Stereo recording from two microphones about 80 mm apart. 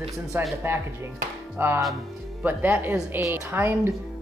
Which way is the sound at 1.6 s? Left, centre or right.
Right.